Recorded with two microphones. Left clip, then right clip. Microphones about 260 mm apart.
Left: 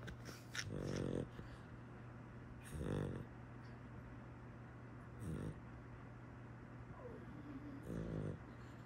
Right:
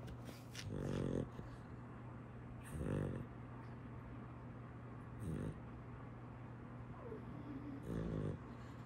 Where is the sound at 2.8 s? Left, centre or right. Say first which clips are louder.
Right 1 dB; centre.